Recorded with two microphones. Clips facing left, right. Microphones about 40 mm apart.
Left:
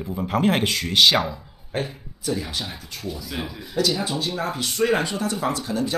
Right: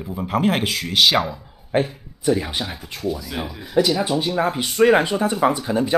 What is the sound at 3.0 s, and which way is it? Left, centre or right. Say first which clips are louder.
Speech: right 5 dB; centre.